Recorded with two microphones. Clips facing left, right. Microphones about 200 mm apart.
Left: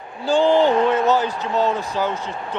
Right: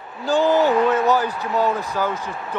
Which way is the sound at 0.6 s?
10° right (ahead or behind).